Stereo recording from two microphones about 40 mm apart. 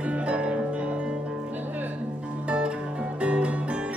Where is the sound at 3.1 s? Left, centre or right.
Right.